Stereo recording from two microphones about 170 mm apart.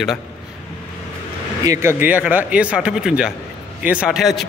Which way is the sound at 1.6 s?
15° right (ahead or behind).